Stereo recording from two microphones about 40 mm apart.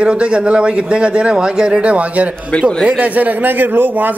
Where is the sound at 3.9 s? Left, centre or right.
Right.